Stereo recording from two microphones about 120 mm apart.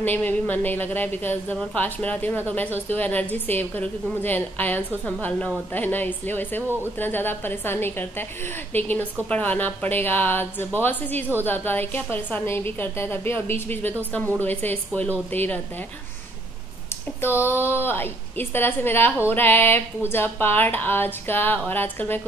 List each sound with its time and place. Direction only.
0.0 s speech: 15° left (ahead or behind)
17.2 s speech: 20° left (ahead or behind)